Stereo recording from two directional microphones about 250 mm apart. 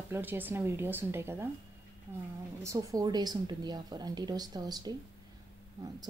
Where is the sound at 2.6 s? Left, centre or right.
Centre.